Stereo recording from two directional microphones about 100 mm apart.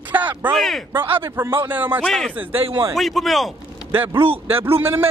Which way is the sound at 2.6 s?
60° right (ahead or behind).